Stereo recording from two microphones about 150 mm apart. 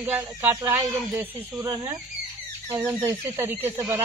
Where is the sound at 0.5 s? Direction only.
25° right (ahead or behind).